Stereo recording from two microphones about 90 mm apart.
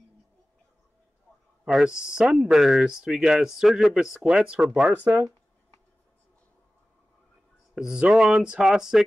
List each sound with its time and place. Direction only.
1.7 s speech: 5° right (ahead or behind)
7.7 s speech: 10° right (ahead or behind)